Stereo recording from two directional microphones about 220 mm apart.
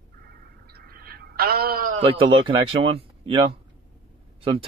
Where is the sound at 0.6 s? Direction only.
45° right (ahead or behind).